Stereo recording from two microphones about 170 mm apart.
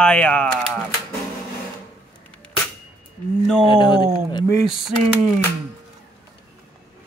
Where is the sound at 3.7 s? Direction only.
25° left (ahead or behind).